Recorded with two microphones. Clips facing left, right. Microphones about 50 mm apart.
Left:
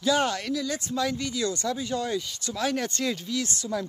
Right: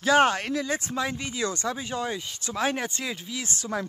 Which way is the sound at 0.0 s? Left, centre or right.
Right.